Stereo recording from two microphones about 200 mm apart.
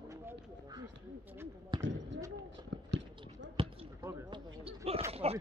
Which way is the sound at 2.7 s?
65° right (ahead or behind).